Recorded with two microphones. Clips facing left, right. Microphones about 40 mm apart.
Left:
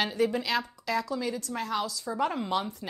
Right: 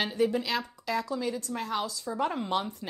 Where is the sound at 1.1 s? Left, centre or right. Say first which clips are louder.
Even; left.